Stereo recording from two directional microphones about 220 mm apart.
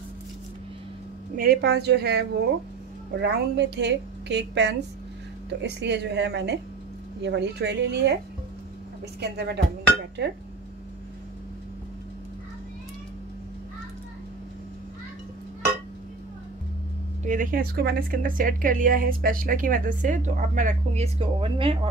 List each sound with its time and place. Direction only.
1.3 s a woman's voice: 40° right (ahead or behind)
9.2 s a woman's voice: 45° right (ahead or behind)
17.2 s speech: 35° right (ahead or behind)